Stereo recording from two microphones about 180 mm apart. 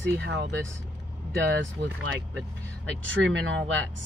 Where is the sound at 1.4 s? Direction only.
80° right.